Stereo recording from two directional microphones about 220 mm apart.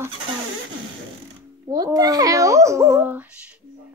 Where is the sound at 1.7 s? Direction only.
15° right (ahead or behind).